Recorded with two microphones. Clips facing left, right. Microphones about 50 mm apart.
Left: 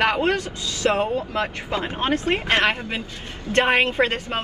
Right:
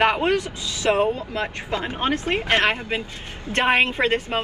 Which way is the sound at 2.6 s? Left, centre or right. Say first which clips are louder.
Even; right.